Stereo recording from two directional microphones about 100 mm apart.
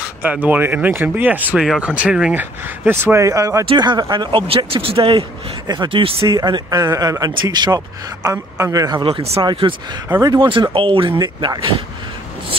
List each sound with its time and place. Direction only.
0.2 s speech: 15° right (ahead or behind)
2.3 s speech: 20° right (ahead or behind)
3.6 s speech: 50° right (ahead or behind); by 5.2 s 70° right (ahead or behind)
5.7 s speech: 55° right (ahead or behind)
6.2 s speech: 40° right (ahead or behind)
9.0 s speech: 60° right (ahead or behind)
9.4 s speech: 50° right (ahead or behind)
11.1 s speech: 40° right (ahead or behind)